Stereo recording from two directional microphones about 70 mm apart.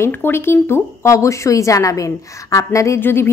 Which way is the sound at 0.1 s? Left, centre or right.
Left.